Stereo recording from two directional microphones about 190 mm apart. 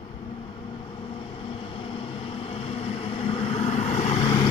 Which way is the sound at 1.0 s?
30° left (ahead or behind).